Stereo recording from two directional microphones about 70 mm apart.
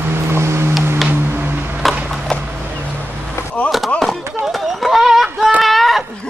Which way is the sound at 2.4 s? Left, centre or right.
Right.